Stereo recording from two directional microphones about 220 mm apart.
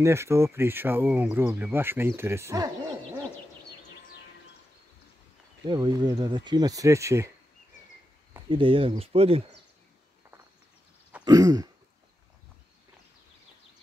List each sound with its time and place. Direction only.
0.0 s speech: 10° right (ahead or behind)
5.7 s speech: 20° right (ahead or behind)
8.5 s speech: 25° right (ahead or behind)
11.2 s speech: 15° right (ahead or behind)